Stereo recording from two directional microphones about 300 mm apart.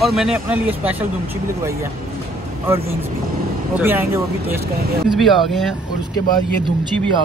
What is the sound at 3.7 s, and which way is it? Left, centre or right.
Speech, centre.